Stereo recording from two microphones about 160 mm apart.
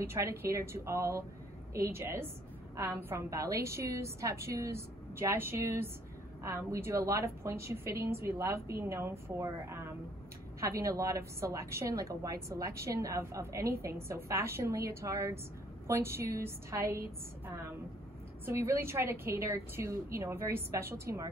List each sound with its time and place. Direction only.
0.0 s a woman's voice: 15° right (ahead or behind)
18.4 s a woman's voice: 15° right (ahead or behind)